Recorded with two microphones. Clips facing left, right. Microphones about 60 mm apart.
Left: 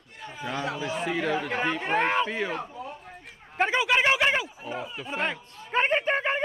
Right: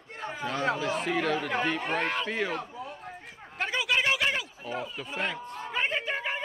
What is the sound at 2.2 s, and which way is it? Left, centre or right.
Speech, centre.